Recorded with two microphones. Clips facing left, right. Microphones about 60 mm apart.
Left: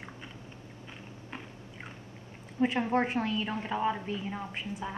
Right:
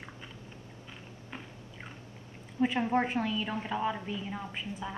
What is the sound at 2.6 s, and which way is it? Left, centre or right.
Speech, centre.